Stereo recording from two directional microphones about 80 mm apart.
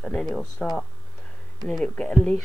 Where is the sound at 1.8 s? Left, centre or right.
Centre.